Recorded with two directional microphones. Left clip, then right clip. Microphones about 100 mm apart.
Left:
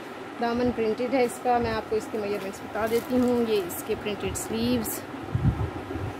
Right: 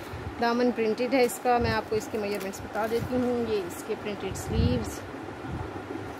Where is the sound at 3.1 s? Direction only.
30° left (ahead or behind).